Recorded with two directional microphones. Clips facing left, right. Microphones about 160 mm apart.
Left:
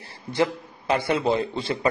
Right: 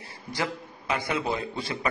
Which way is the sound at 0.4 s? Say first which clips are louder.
Left 8 dB; 30° left (ahead or behind).